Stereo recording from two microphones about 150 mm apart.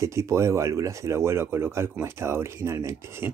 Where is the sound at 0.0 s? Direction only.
20° right (ahead or behind).